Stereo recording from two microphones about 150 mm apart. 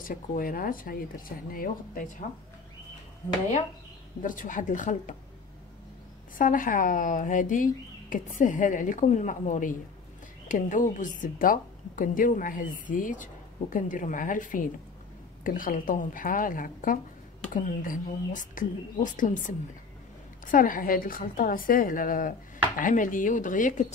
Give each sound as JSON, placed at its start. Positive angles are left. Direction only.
{"t": 0.0, "sound": "speech", "side_deg": 70}
{"t": 4.2, "sound": "a woman's voice", "side_deg": 60}
{"t": 6.3, "sound": "a woman's voice", "side_deg": 65}
{"t": 20.5, "sound": "a woman's voice", "side_deg": 65}